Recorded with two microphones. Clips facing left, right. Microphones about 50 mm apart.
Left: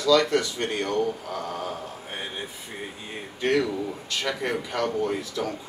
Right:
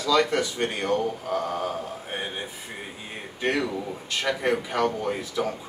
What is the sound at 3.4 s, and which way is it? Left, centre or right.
Speech, centre.